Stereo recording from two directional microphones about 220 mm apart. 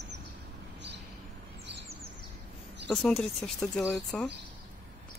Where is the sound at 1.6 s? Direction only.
50° right (ahead or behind).